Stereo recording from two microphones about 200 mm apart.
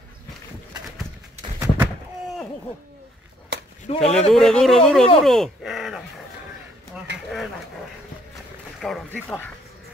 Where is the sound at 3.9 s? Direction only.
30° left (ahead or behind).